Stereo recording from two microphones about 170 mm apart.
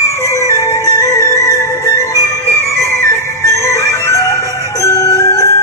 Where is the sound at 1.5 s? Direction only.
15° left (ahead or behind).